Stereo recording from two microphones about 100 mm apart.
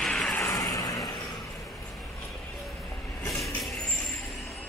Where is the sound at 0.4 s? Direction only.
30° left (ahead or behind).